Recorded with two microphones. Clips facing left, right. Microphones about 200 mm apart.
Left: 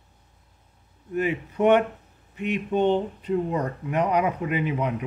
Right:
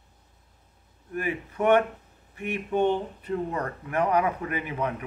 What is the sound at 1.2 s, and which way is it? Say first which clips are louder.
Speech: left 5 dB; 20° left (ahead or behind).